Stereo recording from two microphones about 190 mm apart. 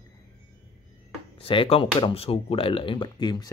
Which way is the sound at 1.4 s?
30° left (ahead or behind).